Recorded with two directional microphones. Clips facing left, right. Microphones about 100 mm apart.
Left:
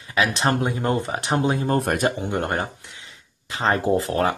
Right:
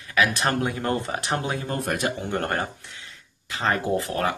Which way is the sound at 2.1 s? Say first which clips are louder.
Left 2 dB; 20° left (ahead or behind).